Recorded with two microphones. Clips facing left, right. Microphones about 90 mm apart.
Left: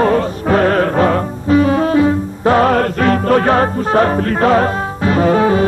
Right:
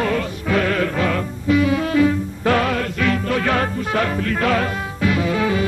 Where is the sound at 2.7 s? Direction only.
45° left (ahead or behind).